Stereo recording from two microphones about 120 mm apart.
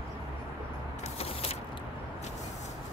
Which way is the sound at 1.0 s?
60° left (ahead or behind).